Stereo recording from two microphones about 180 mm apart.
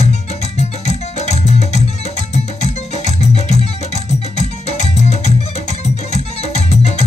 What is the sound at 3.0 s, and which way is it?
Music, 40° left (ahead or behind).